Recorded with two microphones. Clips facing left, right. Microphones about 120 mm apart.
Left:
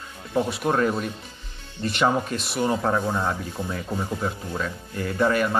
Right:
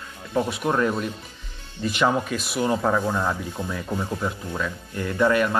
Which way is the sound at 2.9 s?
10° left (ahead or behind).